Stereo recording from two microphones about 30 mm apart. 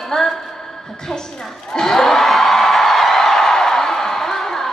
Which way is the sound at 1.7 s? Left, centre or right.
Centre.